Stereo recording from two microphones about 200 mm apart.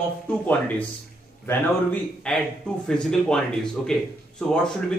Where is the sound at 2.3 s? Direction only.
5° left (ahead or behind).